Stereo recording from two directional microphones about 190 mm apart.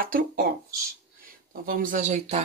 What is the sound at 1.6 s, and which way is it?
Speech, 45° right (ahead or behind).